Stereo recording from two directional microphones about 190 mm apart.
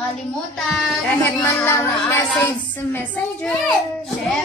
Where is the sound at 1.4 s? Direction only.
10° left (ahead or behind).